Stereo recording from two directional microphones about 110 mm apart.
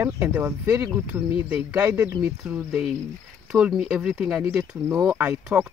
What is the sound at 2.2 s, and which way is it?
Speech, 5° right (ahead or behind).